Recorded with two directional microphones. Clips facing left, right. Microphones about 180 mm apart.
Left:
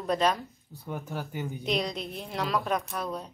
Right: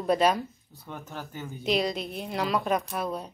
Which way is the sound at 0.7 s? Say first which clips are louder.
Left 7 dB; 10° left (ahead or behind).